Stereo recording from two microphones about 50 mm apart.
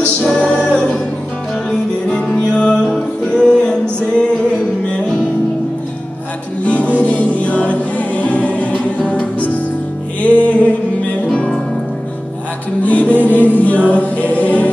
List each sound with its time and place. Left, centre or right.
0.0 s music: centre
6.6 s music: left
11.3 s music: centre
12.8 s music: left
13.9 s choir: left